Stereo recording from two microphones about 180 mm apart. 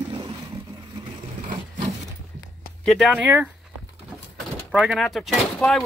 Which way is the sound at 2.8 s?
Centre (ahead or behind).